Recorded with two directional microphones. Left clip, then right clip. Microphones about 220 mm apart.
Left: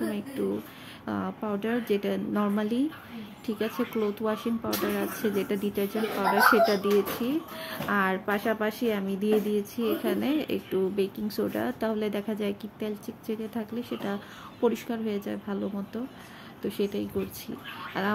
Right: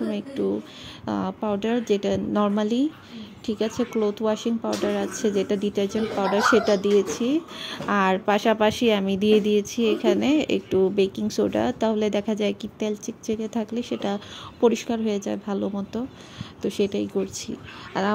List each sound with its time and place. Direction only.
1.0 s speech: 20° right (ahead or behind)